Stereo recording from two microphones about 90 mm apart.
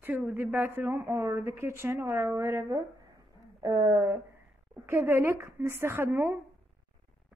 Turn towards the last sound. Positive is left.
turn(degrees=-25)  # may be behind; listen again after turning